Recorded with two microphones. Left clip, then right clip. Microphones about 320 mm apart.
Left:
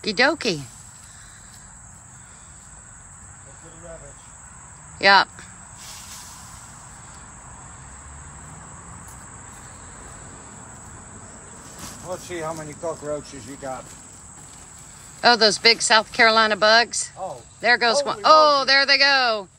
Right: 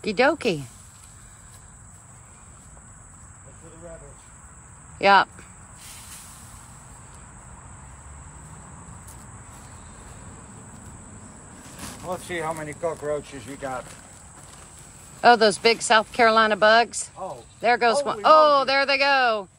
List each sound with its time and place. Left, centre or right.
0.0 s speech: centre
4.9 s a sound: centre
12.3 s speech: right
15.1 s speech: centre